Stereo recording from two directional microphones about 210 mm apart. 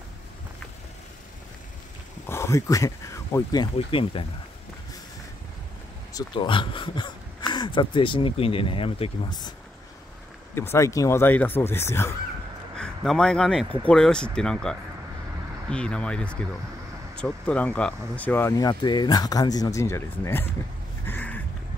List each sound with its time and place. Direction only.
2.2 s speech: 15° left (ahead or behind)
3.7 s speech: 25° left (ahead or behind)
6.1 s speech: 25° left (ahead or behind)
10.5 s speech: 10° left (ahead or behind)
21.0 s a sound: 10° left (ahead or behind)